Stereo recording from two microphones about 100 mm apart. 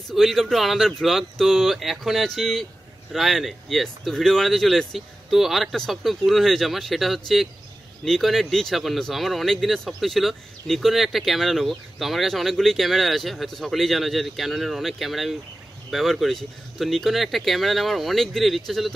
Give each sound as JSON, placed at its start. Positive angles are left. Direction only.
{"t": 0.1, "sound": "speech", "side_deg": 0}